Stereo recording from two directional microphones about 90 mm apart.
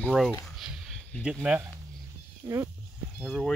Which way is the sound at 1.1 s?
20° left (ahead or behind).